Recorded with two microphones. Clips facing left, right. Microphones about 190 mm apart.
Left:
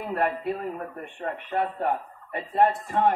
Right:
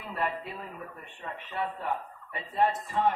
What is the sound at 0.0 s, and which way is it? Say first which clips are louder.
A man's voice: left 7 dB; 55° left (ahead or behind).